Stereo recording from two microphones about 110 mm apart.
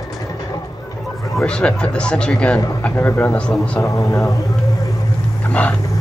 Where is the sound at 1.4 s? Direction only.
10° left (ahead or behind).